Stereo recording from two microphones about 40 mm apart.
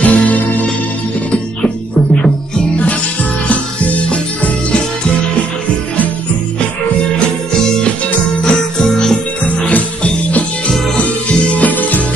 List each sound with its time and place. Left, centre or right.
0.0 s music: left
3.4 s music: left
8.4 s music: centre
9.7 s music: left
11.7 s music: left